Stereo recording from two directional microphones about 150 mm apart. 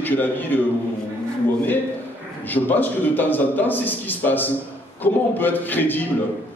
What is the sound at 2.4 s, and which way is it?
A man's voice, 10° left (ahead or behind).